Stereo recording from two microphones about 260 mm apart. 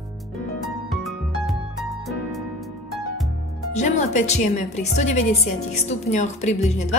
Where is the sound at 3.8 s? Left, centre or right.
Left.